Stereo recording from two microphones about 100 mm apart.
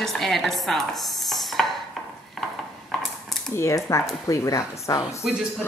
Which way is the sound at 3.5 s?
30° left (ahead or behind).